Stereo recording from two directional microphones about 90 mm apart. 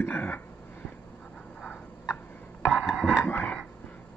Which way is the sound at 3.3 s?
20° left (ahead or behind).